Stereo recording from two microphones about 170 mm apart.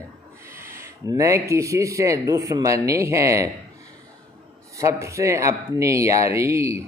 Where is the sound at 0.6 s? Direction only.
15° right (ahead or behind).